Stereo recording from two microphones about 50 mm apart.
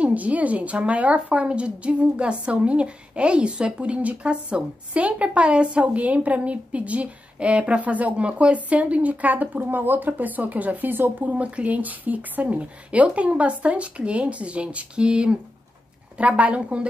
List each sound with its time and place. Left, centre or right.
0.0 s a woman's voice: right